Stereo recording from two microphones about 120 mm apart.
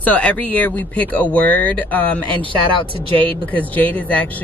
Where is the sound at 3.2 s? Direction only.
15° left (ahead or behind).